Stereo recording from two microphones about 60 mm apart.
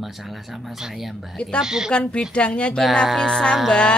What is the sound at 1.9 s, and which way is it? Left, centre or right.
Speech, centre.